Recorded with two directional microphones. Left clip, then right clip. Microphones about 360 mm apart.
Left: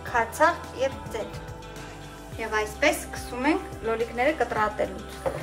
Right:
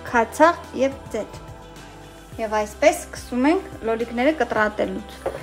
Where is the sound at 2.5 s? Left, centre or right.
Centre.